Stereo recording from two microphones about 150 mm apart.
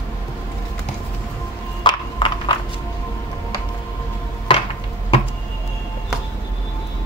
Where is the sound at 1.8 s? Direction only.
30° left (ahead or behind).